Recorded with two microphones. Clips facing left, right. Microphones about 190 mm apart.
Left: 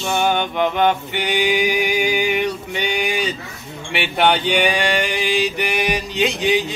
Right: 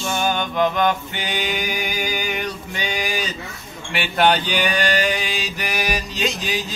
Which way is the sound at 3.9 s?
65° left (ahead or behind).